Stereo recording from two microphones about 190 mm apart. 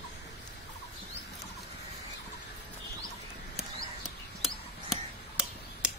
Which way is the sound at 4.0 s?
5° right (ahead or behind).